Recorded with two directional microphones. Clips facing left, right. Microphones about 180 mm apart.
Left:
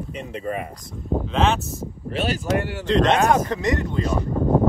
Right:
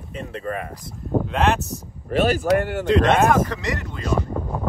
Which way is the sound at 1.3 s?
Centre (ahead or behind).